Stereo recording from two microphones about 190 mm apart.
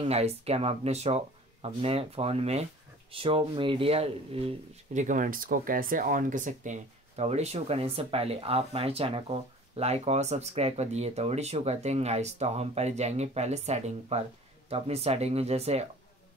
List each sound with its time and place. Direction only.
0.0 s speech: 35° right (ahead or behind)